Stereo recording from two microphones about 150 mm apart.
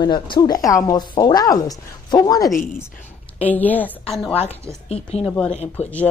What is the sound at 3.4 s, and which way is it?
Speech, 10° left (ahead or behind).